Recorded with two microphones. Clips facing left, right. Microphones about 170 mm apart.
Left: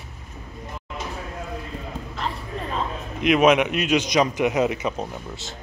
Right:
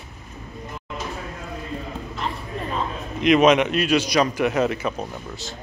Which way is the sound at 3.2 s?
5° left (ahead or behind).